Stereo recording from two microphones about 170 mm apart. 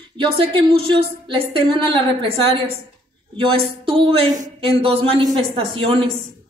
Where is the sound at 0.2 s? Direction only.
30° right (ahead or behind).